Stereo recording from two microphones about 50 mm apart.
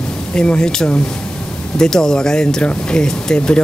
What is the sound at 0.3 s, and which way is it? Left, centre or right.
Speech, centre.